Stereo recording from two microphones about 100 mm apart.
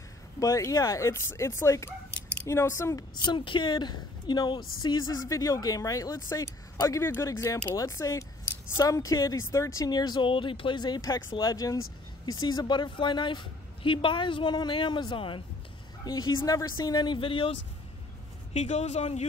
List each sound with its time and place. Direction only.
0.4 s a woman's voice: 30° left (ahead or behind)
3.3 s a woman's voice: 55° left (ahead or behind); by 9.8 s 30° left (ahead or behind)
9.8 s a woman's voice: 45° left (ahead or behind)
16.1 s a woman's voice: 40° left (ahead or behind); by 17.6 s 60° left (ahead or behind)
18.5 s speech: 90° left